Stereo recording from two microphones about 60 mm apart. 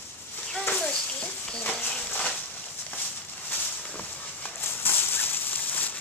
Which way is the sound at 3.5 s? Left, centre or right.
Left.